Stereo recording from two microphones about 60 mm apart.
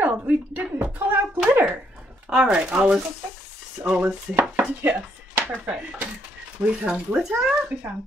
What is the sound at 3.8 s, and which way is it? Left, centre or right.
Dishes, right.